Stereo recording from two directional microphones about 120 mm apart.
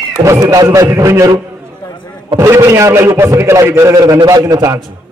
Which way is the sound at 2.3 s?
25° right (ahead or behind).